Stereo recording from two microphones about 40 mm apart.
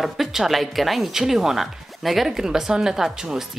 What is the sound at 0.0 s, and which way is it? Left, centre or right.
Speech, centre.